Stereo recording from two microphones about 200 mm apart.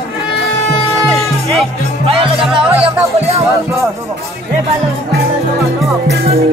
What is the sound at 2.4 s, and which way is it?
Speech, centre (ahead or behind).